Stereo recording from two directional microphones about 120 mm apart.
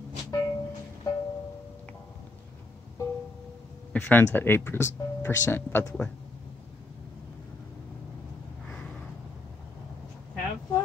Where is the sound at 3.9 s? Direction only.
15° left (ahead or behind).